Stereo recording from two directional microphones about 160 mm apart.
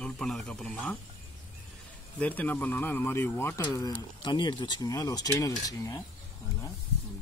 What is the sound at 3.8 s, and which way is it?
Speech, 25° left (ahead or behind).